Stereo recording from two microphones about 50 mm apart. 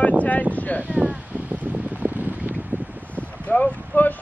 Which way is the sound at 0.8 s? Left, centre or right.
Right.